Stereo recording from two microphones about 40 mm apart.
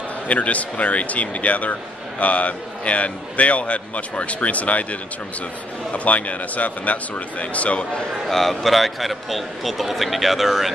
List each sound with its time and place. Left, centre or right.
0.3 s a man's voice: left
5.9 s a man's voice: left
8.3 s speech: centre